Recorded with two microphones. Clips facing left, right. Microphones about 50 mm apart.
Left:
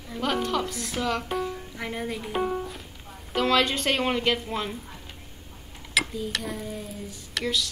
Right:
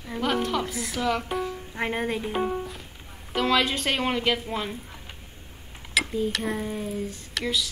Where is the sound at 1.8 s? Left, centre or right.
Right.